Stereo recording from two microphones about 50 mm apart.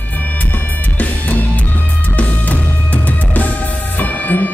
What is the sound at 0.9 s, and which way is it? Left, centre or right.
Music, left.